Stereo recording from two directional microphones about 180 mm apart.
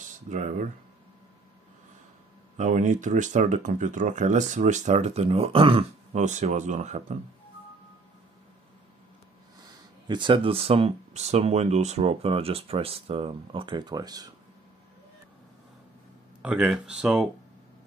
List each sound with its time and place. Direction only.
0.3 s speech: 45° right (ahead or behind)
2.5 s speech: 40° right (ahead or behind)
9.6 s speech: 25° right (ahead or behind)
16.4 s speech: 5° right (ahead or behind)